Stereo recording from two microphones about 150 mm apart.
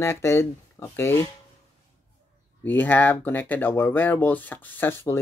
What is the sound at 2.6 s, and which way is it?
Speech, 10° left (ahead or behind).